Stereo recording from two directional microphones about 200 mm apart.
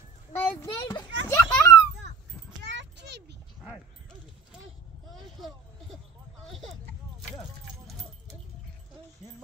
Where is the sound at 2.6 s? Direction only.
60° right (ahead or behind).